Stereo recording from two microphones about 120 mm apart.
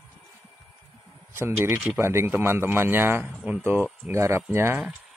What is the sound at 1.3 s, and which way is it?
A man's voice, 20° right (ahead or behind).